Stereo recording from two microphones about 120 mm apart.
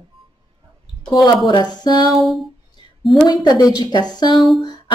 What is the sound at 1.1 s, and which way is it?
A woman's voice, 30° left (ahead or behind).